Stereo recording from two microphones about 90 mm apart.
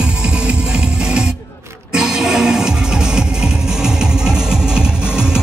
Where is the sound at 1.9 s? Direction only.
5° right (ahead or behind).